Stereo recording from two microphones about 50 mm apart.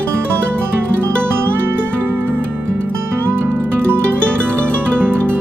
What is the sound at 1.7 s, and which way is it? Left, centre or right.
Music, right.